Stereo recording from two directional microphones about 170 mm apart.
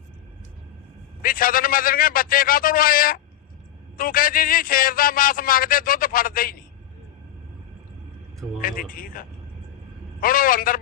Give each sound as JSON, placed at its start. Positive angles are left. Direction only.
{"t": 1.2, "sound": "a man's voice", "side_deg": 55}
{"t": 8.5, "sound": "a man's voice", "side_deg": 55}